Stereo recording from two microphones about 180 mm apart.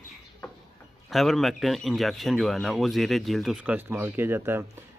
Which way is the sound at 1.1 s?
Centre (ahead or behind).